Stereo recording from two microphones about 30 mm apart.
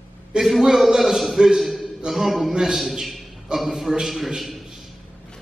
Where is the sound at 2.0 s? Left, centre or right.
Right.